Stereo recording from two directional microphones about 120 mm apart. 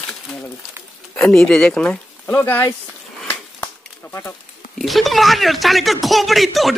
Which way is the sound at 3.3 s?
20° left (ahead or behind).